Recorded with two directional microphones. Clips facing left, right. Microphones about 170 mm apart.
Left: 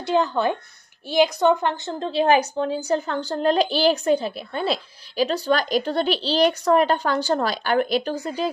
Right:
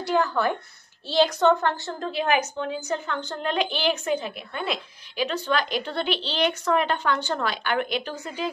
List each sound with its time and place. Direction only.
0.0 s a woman's voice: 20° left (ahead or behind); by 8.5 s 35° left (ahead or behind)